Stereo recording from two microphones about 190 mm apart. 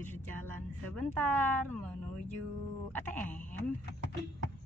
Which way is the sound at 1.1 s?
10° left (ahead or behind).